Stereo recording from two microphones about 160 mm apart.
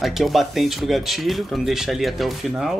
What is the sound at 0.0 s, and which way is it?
Speech, centre (ahead or behind).